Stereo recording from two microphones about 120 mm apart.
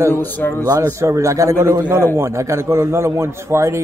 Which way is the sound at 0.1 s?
15° left (ahead or behind).